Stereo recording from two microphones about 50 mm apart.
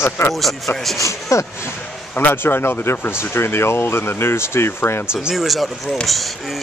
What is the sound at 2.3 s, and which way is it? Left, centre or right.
Speech, left.